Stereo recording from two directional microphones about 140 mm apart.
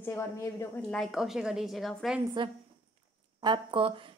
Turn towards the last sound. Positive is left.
turn(degrees=-40)  # may be behind; listen again after turning